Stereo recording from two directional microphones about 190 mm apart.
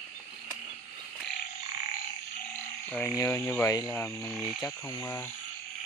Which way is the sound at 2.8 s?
15° left (ahead or behind).